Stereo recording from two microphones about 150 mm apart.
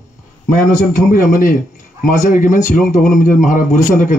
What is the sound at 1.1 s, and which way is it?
A man's voice, 60° left (ahead or behind).